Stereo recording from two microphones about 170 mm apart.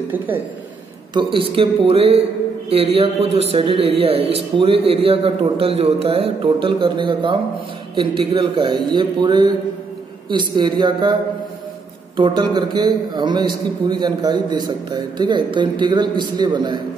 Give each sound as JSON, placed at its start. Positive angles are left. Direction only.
{"t": 1.1, "sound": "a man's voice", "side_deg": -30}
{"t": 12.2, "sound": "a man's voice", "side_deg": -25}